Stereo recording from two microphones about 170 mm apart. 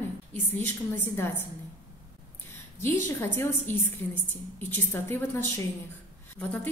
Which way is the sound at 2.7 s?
15° left (ahead or behind).